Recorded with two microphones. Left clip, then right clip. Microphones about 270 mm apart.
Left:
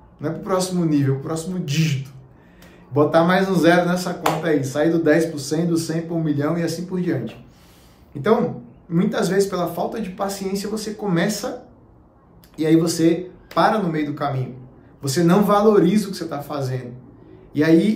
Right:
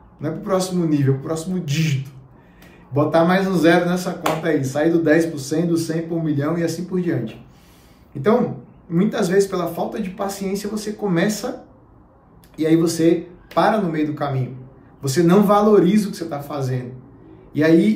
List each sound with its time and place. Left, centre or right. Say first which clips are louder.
0.2 s speech: right 1 dB; centre
12.5 s speech: even; centre